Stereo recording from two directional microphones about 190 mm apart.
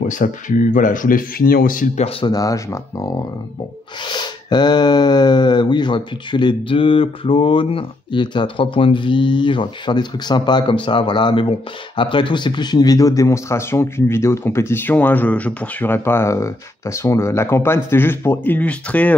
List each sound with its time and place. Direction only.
0.1 s speech: 40° left (ahead or behind)
2.0 s speech: 25° left (ahead or behind); by 19.1 s 5° left (ahead or behind)